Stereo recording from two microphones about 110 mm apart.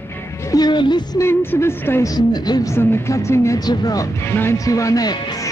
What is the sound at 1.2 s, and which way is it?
Speech, 20° left (ahead or behind).